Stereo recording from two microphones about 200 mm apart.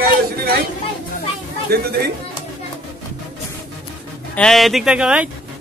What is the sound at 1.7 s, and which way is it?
Speech, 50° right (ahead or behind).